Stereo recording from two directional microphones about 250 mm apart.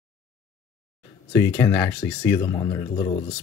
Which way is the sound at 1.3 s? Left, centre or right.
Centre.